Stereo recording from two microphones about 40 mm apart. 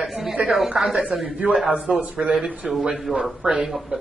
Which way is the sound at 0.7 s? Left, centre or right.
Centre.